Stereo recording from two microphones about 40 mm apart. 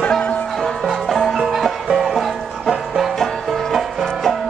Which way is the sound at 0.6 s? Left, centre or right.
Centre.